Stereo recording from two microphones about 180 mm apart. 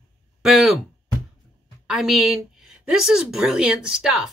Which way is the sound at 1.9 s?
5° right (ahead or behind).